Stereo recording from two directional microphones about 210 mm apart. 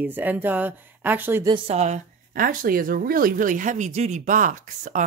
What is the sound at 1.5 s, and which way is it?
Speech, 30° right (ahead or behind).